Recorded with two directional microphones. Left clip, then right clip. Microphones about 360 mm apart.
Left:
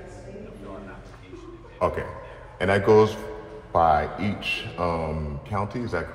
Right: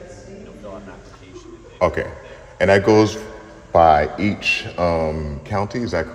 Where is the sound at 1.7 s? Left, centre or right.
Right.